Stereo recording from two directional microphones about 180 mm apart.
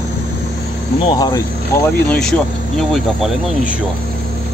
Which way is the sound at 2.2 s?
Centre (ahead or behind).